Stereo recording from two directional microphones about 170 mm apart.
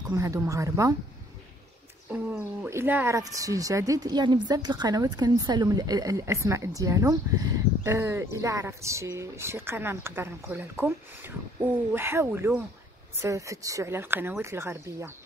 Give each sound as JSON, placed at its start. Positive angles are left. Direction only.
{"t": 0.1, "sound": "speech", "side_deg": -20}
{"t": 2.0, "sound": "speech", "side_deg": -10}